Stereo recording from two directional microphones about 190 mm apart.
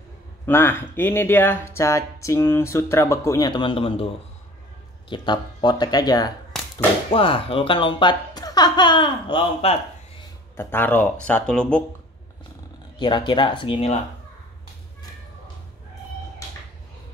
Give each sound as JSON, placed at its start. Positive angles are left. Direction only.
{"t": 0.5, "sound": "speech", "side_deg": 10}
{"t": 5.1, "sound": "speech", "side_deg": 25}
{"t": 10.5, "sound": "speech", "side_deg": 10}
{"t": 13.0, "sound": "speech", "side_deg": 25}